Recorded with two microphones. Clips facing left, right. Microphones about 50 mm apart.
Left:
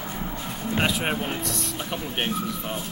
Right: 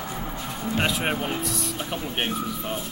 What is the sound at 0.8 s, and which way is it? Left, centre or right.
Speech, centre.